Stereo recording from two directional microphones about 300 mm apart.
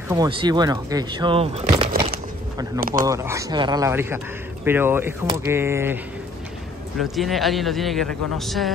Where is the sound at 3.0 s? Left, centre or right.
Centre.